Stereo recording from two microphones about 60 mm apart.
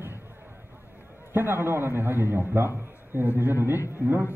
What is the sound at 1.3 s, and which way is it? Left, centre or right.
A woman's voice, right.